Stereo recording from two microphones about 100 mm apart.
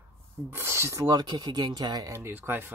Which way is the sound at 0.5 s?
25° right (ahead or behind).